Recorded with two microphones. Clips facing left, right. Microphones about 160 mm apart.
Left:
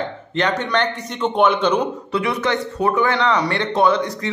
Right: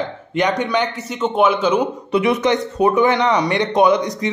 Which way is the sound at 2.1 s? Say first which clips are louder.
Right 5 dB; 20° right (ahead or behind).